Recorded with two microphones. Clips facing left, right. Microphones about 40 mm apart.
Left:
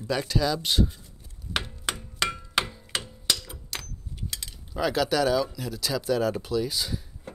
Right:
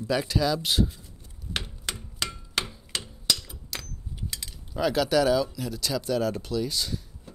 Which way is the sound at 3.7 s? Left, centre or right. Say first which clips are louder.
Left 1 dB; centre.